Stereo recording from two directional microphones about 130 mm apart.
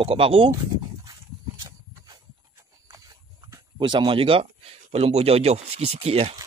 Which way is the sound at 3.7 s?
40° right (ahead or behind).